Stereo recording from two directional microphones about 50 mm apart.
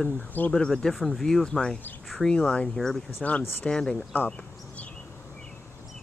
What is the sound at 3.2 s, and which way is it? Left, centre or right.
Speech, centre.